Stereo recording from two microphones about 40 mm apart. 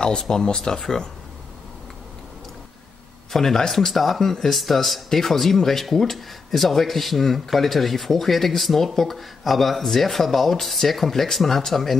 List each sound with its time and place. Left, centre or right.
0.0 s speech: centre
3.3 s speech: centre